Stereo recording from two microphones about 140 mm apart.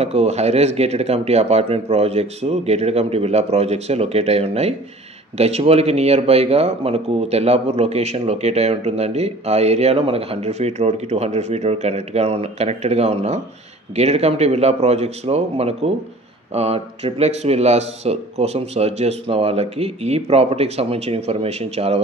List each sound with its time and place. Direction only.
0.0 s speech: 50° right (ahead or behind)